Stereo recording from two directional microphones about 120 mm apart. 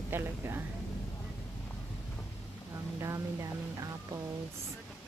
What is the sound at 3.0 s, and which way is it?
Speech, 25° right (ahead or behind).